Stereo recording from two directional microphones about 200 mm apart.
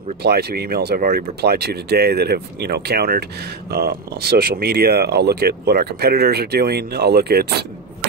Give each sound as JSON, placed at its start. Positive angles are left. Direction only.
{"t": 0.2, "sound": "speech", "side_deg": -55}